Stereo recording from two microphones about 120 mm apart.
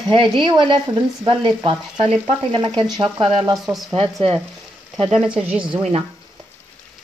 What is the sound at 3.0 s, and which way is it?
Speech, 50° right (ahead or behind).